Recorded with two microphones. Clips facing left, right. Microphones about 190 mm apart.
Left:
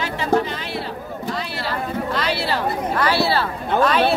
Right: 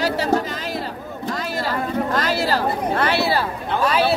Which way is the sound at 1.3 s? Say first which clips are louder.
Right 3 dB; 45° right (ahead or behind).